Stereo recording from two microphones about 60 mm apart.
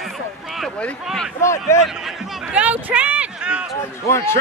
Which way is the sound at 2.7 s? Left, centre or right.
Right.